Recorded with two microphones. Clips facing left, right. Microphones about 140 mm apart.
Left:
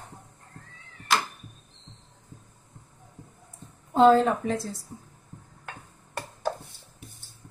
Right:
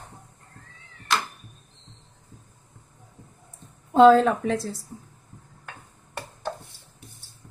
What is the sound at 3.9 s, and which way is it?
Speech, 85° right.